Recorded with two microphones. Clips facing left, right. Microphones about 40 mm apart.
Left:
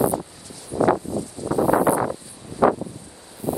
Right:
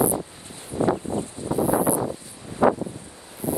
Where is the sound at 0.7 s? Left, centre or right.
Left.